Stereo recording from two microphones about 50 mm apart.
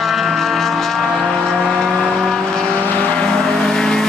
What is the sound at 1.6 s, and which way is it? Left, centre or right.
Vehicle, centre.